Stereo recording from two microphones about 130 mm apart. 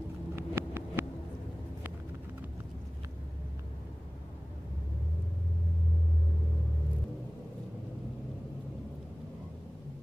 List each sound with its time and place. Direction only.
0.4 s vehicle: 20° right (ahead or behind)